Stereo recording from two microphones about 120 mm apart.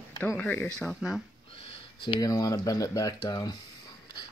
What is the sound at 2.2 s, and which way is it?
Speech, 30° left (ahead or behind).